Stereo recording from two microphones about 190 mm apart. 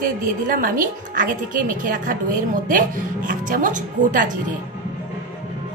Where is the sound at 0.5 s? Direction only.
45° right (ahead or behind).